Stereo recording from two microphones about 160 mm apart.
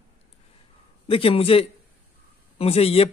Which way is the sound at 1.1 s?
35° left (ahead or behind).